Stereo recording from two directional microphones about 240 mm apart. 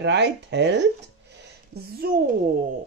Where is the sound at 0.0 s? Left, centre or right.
Right.